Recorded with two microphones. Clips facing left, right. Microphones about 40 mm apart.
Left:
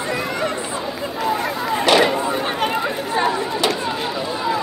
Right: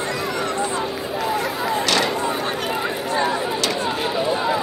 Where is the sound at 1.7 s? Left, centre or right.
Centre.